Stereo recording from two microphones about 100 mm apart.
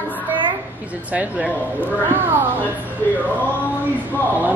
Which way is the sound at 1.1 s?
15° right (ahead or behind).